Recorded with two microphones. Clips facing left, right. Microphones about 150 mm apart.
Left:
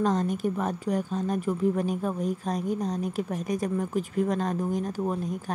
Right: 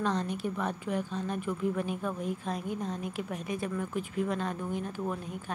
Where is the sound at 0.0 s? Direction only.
45° left (ahead or behind).